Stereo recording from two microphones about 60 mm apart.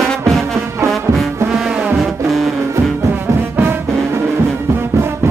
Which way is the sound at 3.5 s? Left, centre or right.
Right.